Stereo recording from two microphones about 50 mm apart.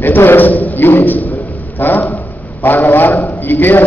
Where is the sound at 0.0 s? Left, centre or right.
Left.